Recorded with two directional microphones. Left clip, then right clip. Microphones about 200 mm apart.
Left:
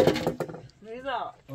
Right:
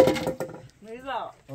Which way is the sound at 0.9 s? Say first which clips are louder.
Left 1 dB; centre (ahead or behind).